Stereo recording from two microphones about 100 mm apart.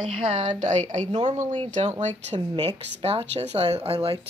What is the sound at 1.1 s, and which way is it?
Speech, 70° right (ahead or behind).